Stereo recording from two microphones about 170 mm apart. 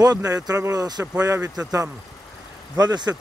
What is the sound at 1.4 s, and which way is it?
Speech, 5° right (ahead or behind).